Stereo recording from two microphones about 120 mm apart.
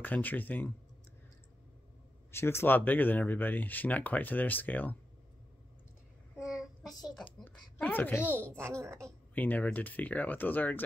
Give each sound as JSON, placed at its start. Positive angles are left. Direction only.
{"t": 0.0, "sound": "speech", "side_deg": 15}
{"t": 2.3, "sound": "speech", "side_deg": 20}
{"t": 6.3, "sound": "child singing", "side_deg": -5}
{"t": 6.9, "sound": "speech", "side_deg": 35}
{"t": 7.4, "sound": "speech", "side_deg": 15}
{"t": 8.8, "sound": "a woman's voice", "side_deg": -25}
{"t": 9.3, "sound": "speech", "side_deg": 15}